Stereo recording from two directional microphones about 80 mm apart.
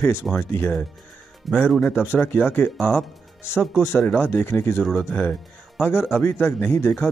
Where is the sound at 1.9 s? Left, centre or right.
Left.